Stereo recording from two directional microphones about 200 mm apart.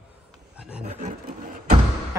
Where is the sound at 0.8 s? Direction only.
35° right (ahead or behind).